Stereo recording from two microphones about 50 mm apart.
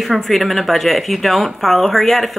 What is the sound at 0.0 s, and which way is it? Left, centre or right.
Speech, centre.